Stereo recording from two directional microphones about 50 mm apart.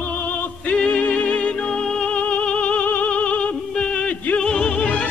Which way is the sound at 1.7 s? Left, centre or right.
Centre.